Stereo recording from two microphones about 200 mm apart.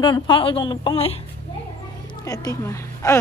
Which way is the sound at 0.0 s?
25° left (ahead or behind).